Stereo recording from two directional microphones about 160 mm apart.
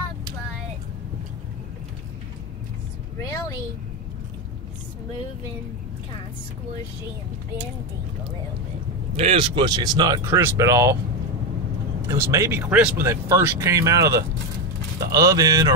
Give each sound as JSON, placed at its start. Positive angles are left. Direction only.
{"t": 9.1, "sound": "speech", "side_deg": -40}
{"t": 12.1, "sound": "speech", "side_deg": -20}